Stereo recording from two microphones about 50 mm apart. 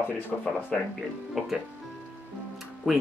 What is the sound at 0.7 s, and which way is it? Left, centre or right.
Speech, left.